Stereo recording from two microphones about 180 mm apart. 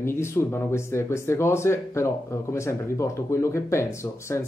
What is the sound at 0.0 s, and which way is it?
Speech, 15° left (ahead or behind).